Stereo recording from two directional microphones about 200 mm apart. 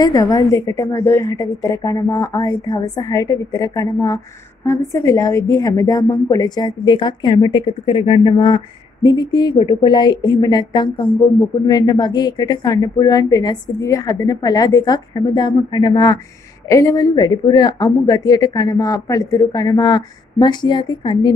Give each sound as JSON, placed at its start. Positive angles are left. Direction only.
{"t": 0.0, "sound": "a woman's voice", "side_deg": 15}